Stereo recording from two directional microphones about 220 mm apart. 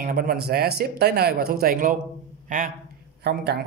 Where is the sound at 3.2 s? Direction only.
45° right (ahead or behind).